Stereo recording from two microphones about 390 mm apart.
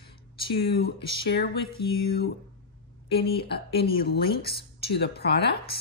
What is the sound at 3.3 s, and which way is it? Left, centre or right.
Speech, left.